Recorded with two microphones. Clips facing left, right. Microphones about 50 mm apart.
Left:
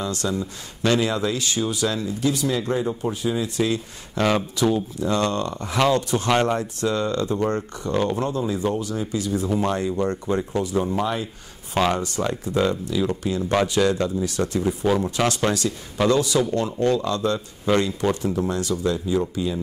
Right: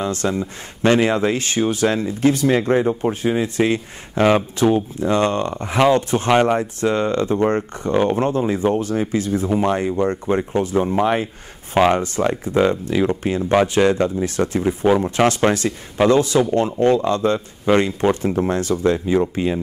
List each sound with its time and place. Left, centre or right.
0.0 s speech: right
11.7 s speech: right